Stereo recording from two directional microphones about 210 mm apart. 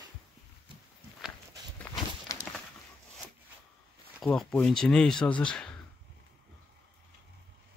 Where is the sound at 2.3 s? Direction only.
15° left (ahead or behind).